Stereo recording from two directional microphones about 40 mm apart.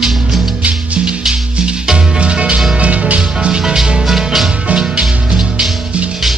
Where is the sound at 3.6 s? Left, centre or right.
Centre.